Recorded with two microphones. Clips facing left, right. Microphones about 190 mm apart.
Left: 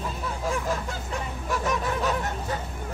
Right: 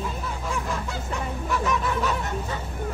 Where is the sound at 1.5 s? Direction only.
40° left (ahead or behind).